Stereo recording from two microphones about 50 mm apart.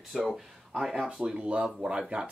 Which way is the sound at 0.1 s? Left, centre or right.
Centre.